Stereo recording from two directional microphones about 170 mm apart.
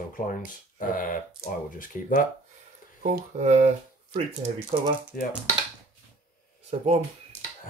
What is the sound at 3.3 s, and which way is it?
Speech, 40° right (ahead or behind).